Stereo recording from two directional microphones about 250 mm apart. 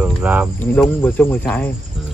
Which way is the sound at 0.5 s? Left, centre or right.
Centre.